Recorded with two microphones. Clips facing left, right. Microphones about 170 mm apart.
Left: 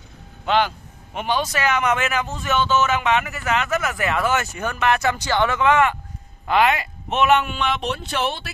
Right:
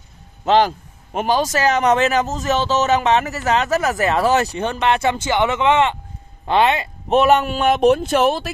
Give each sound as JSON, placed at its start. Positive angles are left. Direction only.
{"t": 0.5, "sound": "a man's voice", "side_deg": -40}
{"t": 7.1, "sound": "speech", "side_deg": -40}